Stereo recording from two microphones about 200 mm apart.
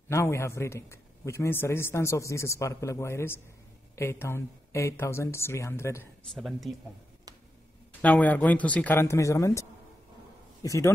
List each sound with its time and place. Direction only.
0.1 s a man's voice: 15° left (ahead or behind)
6.3 s speech: centre (ahead or behind)
8.0 s a man's voice: 5° left (ahead or behind)